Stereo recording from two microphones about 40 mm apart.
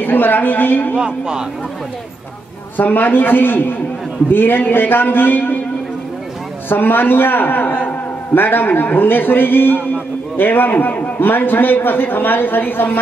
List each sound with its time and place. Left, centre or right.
0.0 s a man's voice: left
0.9 s speech: right
2.8 s a man's voice: left
6.7 s a man's voice: left